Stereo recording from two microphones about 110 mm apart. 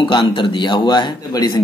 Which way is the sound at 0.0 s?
50° left (ahead or behind).